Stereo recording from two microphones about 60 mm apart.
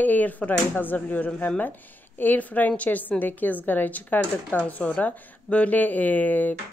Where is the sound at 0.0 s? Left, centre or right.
Left.